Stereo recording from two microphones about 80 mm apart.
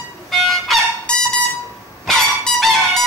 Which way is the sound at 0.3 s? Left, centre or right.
Centre.